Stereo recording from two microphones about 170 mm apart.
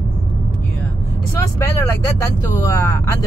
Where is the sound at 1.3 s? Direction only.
15° left (ahead or behind).